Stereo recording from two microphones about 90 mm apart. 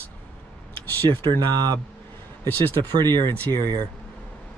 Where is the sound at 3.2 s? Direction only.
25° left (ahead or behind).